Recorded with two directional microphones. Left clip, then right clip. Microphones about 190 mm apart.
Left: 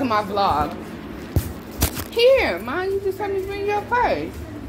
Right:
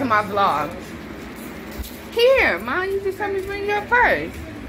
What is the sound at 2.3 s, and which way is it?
A woman's voice, 15° left (ahead or behind).